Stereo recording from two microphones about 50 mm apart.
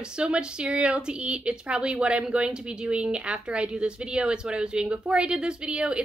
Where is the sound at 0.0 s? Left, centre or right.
Centre.